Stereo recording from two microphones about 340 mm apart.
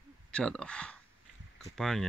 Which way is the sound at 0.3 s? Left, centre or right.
Centre.